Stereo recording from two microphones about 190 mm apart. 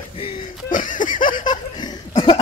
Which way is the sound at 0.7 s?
45° left (ahead or behind).